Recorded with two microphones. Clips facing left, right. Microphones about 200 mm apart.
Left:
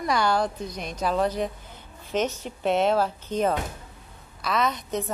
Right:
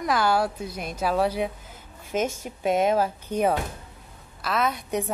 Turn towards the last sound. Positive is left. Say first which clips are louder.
# even
turn(degrees=-10)  # may be behind; listen again after turning